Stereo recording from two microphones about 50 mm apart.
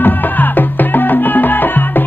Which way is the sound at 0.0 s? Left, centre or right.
Left.